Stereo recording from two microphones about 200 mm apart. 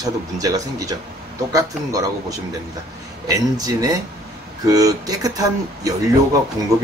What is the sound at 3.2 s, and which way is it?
Speech, 20° right (ahead or behind).